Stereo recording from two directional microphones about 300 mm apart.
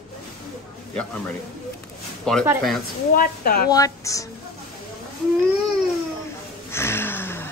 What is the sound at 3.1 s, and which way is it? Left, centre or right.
Speech, left.